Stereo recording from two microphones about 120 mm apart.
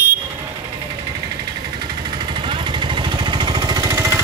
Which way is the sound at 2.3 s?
45° right (ahead or behind).